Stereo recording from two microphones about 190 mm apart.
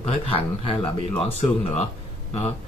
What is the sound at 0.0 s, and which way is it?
Speech, 30° left (ahead or behind).